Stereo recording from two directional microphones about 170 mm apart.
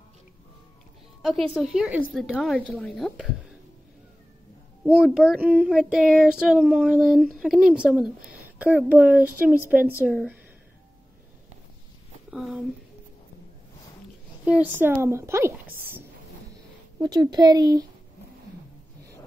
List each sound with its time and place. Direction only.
1.5 s a woman's voice: 5° right (ahead or behind)
2.1 s child singing: centre (ahead or behind)
4.8 s child singing: 5° right (ahead or behind)
12.3 s speech: 5° right (ahead or behind)
14.4 s a woman's voice: 10° right (ahead or behind)
17.0 s speech: 20° right (ahead or behind)